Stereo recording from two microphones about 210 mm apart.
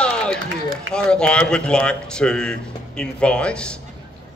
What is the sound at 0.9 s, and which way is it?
A man's voice, 5° left (ahead or behind).